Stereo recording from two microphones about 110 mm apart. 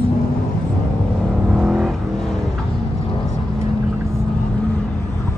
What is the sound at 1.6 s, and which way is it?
Vehicle, 5° right (ahead or behind).